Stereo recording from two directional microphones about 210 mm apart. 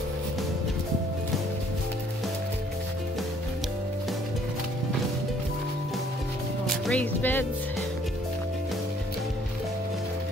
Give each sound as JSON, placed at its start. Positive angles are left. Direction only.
{"t": 6.7, "sound": "speech", "side_deg": 5}